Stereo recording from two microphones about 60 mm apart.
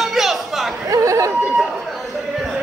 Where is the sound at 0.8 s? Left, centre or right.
Right.